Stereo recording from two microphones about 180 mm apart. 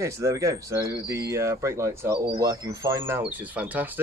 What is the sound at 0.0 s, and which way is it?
Speech, 15° right (ahead or behind).